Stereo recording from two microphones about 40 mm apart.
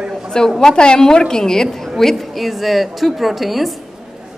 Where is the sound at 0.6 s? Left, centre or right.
Centre.